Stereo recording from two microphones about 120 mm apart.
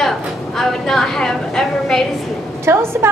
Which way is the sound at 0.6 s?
5° left (ahead or behind).